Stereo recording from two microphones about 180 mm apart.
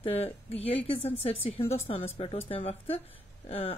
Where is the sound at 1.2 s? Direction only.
35° left (ahead or behind).